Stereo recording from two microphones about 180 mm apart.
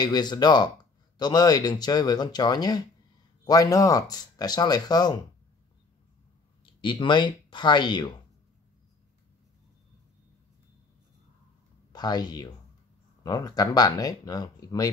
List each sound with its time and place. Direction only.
0.0 s speech: 25° left (ahead or behind)
6.6 s speech: 25° left (ahead or behind)
11.9 s speech: 20° left (ahead or behind)